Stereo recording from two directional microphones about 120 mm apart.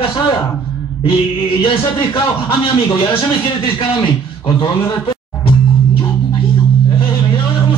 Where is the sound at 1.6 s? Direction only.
45° left (ahead or behind).